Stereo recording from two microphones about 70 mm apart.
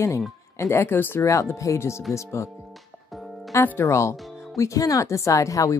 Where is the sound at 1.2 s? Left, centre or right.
Left.